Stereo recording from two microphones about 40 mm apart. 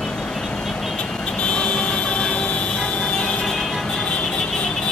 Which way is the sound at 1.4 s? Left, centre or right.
Left.